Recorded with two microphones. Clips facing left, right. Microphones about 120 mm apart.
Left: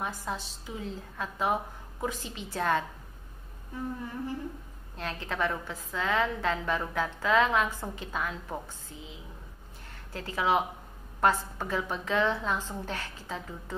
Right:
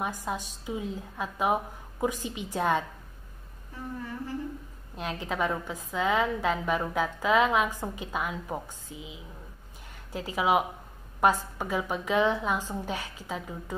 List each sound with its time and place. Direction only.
0.0 s a woman's voice: 15° right (ahead or behind)
4.9 s a woman's voice: 15° right (ahead or behind)